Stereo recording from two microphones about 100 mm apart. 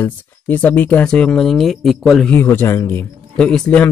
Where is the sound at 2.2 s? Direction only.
20° left (ahead or behind).